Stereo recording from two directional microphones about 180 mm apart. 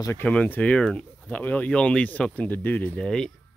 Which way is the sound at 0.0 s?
15° left (ahead or behind).